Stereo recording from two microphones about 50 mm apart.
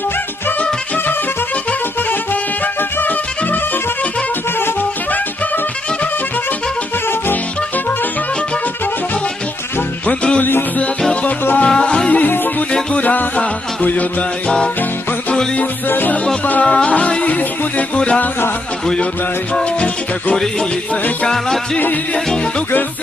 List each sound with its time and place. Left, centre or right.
0.6 s music: left
2.6 s music: left
10.0 s music: left
11.6 s music: left
12.9 s music: left
15.9 s music: left
16.6 s music: left
20.9 s music: left